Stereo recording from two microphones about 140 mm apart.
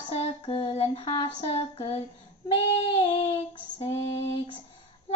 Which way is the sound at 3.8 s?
45° left (ahead or behind).